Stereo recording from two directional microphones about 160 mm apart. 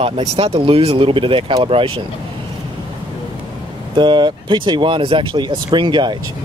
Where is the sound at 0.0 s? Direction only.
35° right (ahead or behind).